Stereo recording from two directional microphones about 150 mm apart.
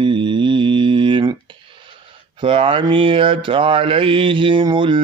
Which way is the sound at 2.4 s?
35° right (ahead or behind).